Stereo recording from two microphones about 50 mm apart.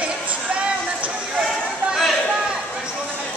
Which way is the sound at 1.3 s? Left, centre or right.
Centre.